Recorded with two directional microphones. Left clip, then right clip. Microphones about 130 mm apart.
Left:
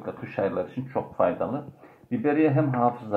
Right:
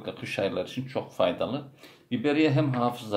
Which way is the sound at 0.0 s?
25° right (ahead or behind).